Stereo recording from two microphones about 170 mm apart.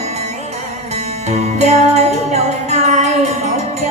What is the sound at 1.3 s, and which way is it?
Music, 40° right (ahead or behind).